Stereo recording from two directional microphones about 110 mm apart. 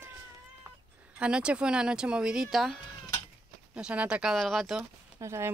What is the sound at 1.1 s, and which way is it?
Speech, 10° right (ahead or behind).